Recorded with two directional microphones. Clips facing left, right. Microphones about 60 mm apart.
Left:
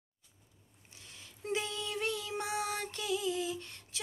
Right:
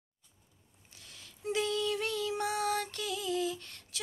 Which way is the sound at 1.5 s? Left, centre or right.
Left.